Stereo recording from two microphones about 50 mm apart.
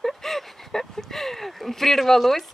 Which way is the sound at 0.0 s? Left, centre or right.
Centre.